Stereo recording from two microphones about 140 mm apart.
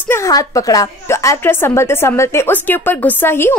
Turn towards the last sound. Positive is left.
turn(degrees=15)  # may be behind; listen again after turning